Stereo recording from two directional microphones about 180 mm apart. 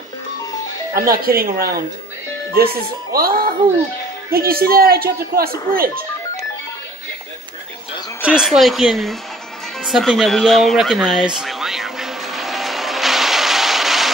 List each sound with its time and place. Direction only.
0.9 s speech: 55° right (ahead or behind)
8.3 s speech: centre (ahead or behind)
9.8 s music: centre (ahead or behind)